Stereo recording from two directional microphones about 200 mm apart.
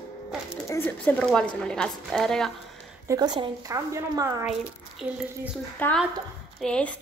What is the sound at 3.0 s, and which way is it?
A woman's voice, 20° right (ahead or behind).